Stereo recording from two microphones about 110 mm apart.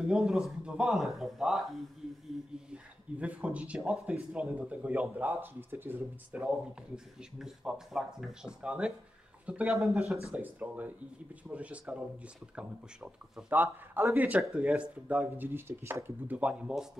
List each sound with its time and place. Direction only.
0.0 s speech: 5° right (ahead or behind)
2.7 s speech: 10° right (ahead or behind)
10.3 s speech: 15° right (ahead or behind)